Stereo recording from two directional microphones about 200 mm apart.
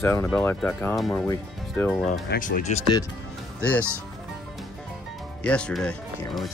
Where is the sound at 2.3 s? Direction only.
45° left (ahead or behind).